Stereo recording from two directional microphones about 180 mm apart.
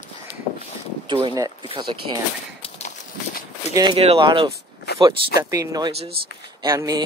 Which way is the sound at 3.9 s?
30° right (ahead or behind).